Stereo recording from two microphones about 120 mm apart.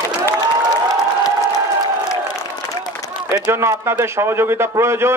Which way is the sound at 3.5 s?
20° right (ahead or behind).